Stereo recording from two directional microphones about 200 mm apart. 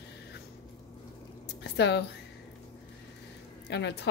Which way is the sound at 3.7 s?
60° left (ahead or behind).